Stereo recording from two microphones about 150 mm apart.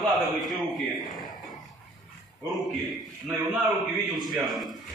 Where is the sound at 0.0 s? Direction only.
Centre (ahead or behind).